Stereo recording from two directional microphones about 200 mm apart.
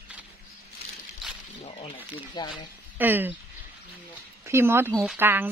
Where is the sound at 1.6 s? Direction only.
25° left (ahead or behind).